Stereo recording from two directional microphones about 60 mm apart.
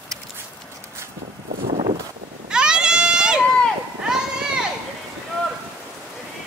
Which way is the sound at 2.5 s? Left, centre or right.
Centre.